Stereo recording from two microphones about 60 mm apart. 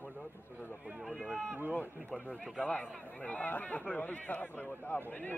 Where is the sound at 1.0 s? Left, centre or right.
Centre.